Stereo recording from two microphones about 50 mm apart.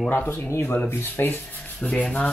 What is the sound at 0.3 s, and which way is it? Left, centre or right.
Speech, left.